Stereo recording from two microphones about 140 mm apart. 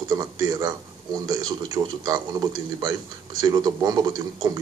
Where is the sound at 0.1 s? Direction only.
25° right (ahead or behind).